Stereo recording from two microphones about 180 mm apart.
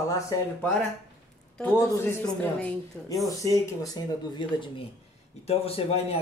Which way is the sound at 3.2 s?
20° left (ahead or behind).